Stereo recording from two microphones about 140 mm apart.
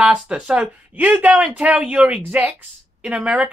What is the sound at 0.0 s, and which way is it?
Speech, 5° right (ahead or behind).